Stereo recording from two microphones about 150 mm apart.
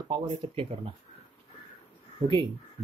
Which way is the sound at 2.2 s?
35° right (ahead or behind).